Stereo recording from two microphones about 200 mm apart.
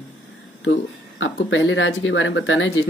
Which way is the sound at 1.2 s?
75° left (ahead or behind).